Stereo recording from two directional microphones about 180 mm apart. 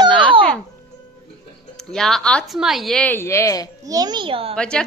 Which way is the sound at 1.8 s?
5° left (ahead or behind).